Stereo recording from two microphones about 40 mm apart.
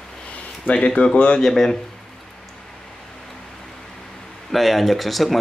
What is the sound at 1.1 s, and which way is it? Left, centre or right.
Speech, left.